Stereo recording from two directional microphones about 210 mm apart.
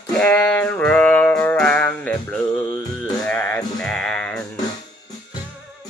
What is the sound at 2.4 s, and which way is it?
Music, 20° left (ahead or behind).